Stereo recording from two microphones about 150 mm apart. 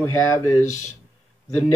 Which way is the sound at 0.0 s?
15° left (ahead or behind).